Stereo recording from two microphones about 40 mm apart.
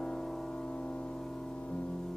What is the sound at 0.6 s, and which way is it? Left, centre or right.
Music, left.